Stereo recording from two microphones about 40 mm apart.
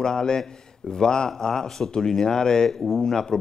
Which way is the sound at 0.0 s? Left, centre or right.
Centre.